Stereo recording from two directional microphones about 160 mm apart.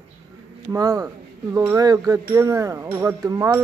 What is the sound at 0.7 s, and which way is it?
Speech, 25° right (ahead or behind).